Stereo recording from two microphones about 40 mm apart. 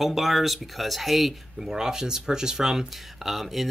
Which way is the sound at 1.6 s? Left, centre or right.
Centre.